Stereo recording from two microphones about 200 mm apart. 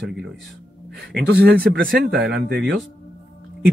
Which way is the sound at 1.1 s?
50° right (ahead or behind).